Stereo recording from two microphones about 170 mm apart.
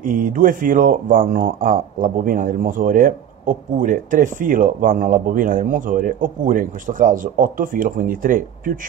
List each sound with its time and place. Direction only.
0.0 s speech: 55° right (ahead or behind)